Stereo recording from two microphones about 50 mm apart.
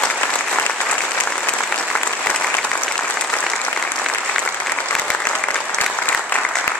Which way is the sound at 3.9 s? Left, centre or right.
Centre.